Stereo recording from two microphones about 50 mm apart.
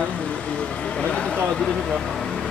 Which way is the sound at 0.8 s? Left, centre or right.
Left.